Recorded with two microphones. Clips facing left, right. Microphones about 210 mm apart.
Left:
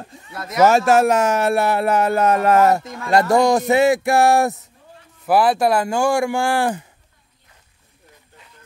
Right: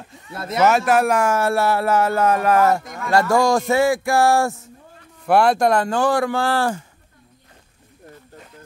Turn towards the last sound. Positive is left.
turn(degrees=15)  # may be behind; listen again after turning